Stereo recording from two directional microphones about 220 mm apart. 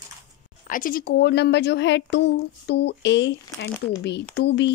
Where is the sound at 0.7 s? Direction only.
40° left (ahead or behind).